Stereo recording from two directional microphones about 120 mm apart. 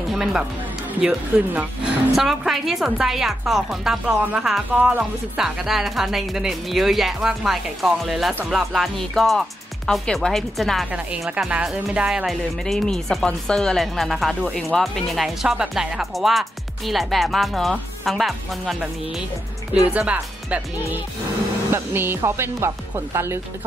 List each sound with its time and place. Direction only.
0.1 s speech: 5° right (ahead or behind)
10.9 s speech: 10° right (ahead or behind)
19.9 s speech: 10° right (ahead or behind)